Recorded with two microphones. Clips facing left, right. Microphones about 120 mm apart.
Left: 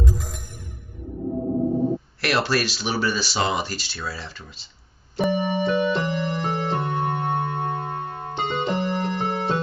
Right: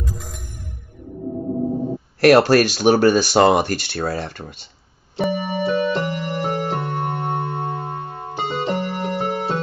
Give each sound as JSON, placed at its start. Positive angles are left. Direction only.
{"t": 0.1, "sound": "music", "side_deg": 0}
{"t": 2.1, "sound": "speech", "side_deg": -45}
{"t": 5.1, "sound": "keyboard", "side_deg": -5}